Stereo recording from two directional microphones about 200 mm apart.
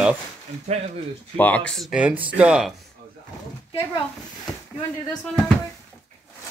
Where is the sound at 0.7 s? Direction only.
35° right (ahead or behind).